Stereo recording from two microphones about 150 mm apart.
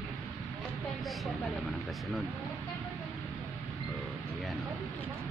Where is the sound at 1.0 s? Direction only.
Centre (ahead or behind).